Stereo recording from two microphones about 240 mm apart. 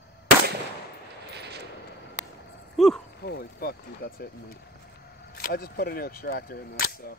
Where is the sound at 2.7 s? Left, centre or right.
Centre.